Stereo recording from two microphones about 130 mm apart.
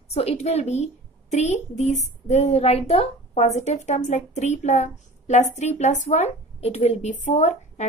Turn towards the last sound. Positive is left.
turn(degrees=65)  # may be behind; listen again after turning